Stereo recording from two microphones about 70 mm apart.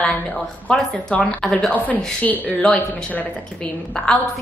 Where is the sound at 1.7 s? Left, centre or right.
Left.